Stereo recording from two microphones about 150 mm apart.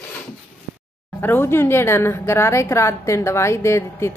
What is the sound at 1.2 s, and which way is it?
A woman's voice, 15° left (ahead or behind).